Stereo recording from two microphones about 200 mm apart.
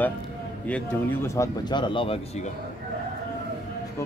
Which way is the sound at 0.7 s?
10° left (ahead or behind).